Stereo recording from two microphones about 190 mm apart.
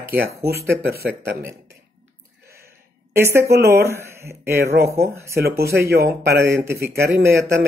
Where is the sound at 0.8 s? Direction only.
55° right (ahead or behind).